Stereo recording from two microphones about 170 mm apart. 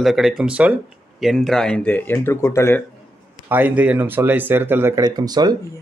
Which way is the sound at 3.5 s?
10° right (ahead or behind).